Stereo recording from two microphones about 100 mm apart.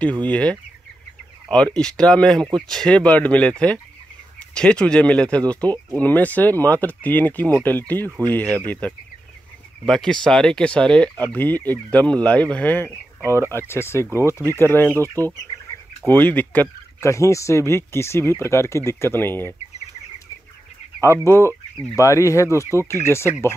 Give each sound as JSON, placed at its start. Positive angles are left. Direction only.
{"t": 0.2, "sound": "speech", "side_deg": 15}
{"t": 12.9, "sound": "speech", "side_deg": -25}
{"t": 13.5, "sound": "speech", "side_deg": 25}
{"t": 16.1, "sound": "speech", "side_deg": 20}
{"t": 17.0, "sound": "speech", "side_deg": 30}
{"t": 21.3, "sound": "speech", "side_deg": 25}